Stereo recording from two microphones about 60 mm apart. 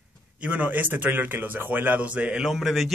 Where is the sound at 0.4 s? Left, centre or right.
Right.